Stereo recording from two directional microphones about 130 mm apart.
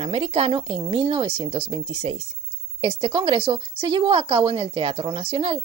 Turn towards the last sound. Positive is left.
turn(degrees=-45)  # may be behind; listen again after turning